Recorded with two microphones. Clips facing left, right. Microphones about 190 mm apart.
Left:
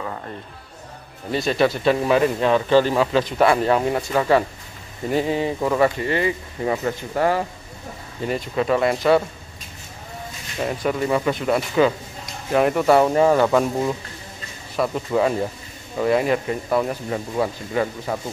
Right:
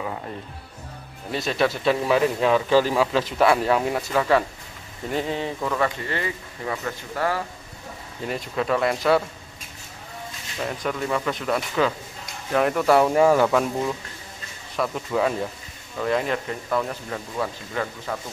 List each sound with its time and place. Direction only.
1.3 s a man's voice: centre (ahead or behind)
5.6 s speech: 20° left (ahead or behind)
8.3 s a man's voice: centre (ahead or behind)
10.6 s a man's voice: 10° left (ahead or behind)